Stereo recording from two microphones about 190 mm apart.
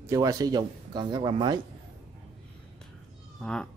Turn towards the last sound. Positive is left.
turn(degrees=5)  # may be behind; listen again after turning